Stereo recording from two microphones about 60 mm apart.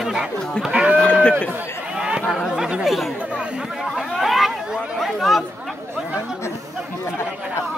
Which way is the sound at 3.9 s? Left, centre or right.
Centre.